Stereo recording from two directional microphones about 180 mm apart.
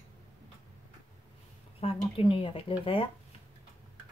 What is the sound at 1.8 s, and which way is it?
A woman's voice, 30° left (ahead or behind).